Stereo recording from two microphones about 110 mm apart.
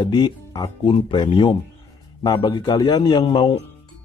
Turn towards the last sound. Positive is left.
turn(degrees=45)  # may be behind; listen again after turning